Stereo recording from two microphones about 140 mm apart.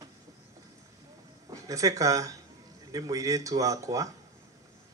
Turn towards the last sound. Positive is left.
turn(degrees=-25)  # may be behind; listen again after turning